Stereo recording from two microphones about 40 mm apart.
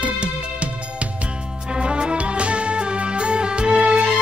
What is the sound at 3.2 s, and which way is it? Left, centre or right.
Music, right.